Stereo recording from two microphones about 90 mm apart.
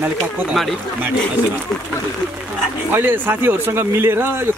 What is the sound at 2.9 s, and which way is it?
Speech, 20° right (ahead or behind).